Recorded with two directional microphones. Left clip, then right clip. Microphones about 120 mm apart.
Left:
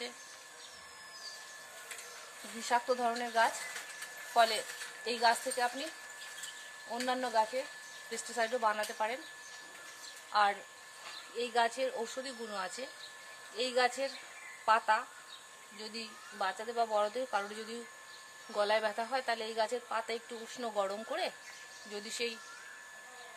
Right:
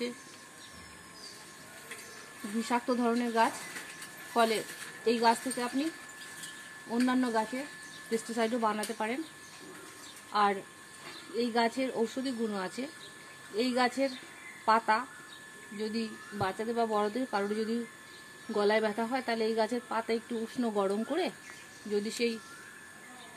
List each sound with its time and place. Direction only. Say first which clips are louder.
2.7 s speech: right 1 dB; 10° right (ahead or behind)
5.0 s speech: right 3 dB; 5° right (ahead or behind)
7.1 s speech: left 1 dB; 5° right (ahead or behind)
10.3 s speech: right 2 dB; 10° right (ahead or behind)
11.3 s speech: right 2 dB; 20° right (ahead or behind); by 22.3 s centre (ahead or behind)